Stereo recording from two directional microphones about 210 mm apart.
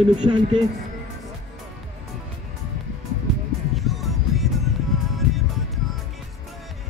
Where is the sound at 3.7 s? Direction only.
Centre (ahead or behind).